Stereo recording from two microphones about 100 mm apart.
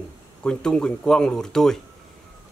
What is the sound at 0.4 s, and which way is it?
A man's voice, 10° left (ahead or behind).